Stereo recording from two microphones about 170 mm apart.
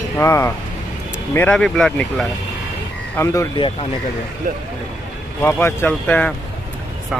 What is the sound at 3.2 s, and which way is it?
Speech, 20° left (ahead or behind).